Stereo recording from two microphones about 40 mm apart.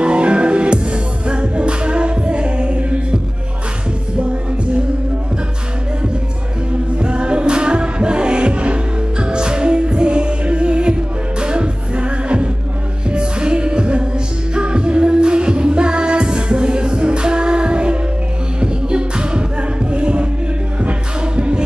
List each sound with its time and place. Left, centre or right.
0.0 s music: right
7.0 s music: right